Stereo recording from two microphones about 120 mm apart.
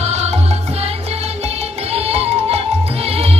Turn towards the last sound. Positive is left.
turn(degrees=-60)  # may be behind; listen again after turning